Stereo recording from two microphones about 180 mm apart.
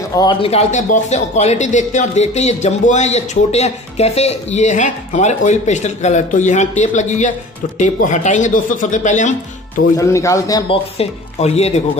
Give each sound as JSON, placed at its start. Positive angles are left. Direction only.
{"t": 0.1, "sound": "speech", "side_deg": 25}
{"t": 9.9, "sound": "speech", "side_deg": 15}
{"t": 10.7, "sound": "speech", "side_deg": 35}